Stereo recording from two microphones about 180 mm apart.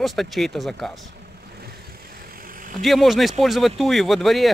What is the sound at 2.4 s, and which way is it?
Vehicle, 50° right (ahead or behind).